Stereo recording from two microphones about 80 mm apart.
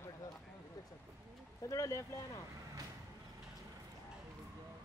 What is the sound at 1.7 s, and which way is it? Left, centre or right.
Speech, left.